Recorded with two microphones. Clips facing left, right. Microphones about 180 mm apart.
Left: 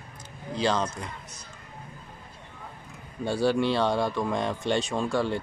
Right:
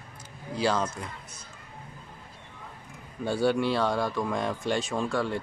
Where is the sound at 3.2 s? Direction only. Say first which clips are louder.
Left 1 dB; centre (ahead or behind).